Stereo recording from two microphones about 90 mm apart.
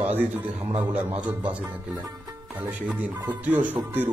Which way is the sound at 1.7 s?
50° right (ahead or behind).